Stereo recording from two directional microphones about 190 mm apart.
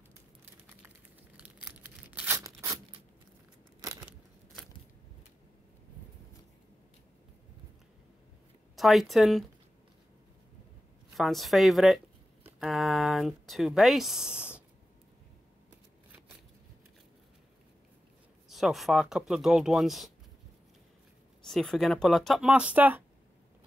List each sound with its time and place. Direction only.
0.8 s tearing: 5° right (ahead or behind)
3.8 s a sound: 15° right (ahead or behind)
8.7 s speech: centre (ahead or behind)
11.1 s speech: centre (ahead or behind)
12.4 s a sound: centre (ahead or behind)
18.5 s speech: centre (ahead or behind)
21.5 s speech: centre (ahead or behind)